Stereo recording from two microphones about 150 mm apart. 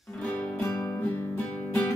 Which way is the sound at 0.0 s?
5° left (ahead or behind).